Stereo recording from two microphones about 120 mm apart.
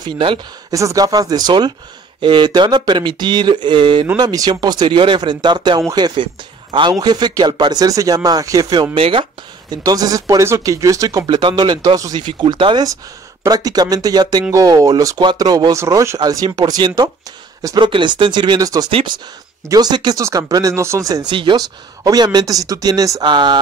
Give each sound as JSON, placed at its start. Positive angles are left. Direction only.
{"t": 0.7, "sound": "speech", "side_deg": -30}
{"t": 8.9, "sound": "speech", "side_deg": -50}
{"t": 9.7, "sound": "speech", "side_deg": -30}
{"t": 18.9, "sound": "speech", "side_deg": -50}
{"t": 19.7, "sound": "speech", "side_deg": -35}
{"t": 21.3, "sound": "speech", "side_deg": -40}
{"t": 23.2, "sound": "speech", "side_deg": -40}